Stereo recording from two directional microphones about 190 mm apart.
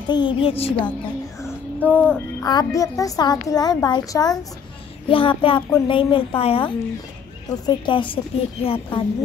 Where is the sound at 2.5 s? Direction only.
20° left (ahead or behind).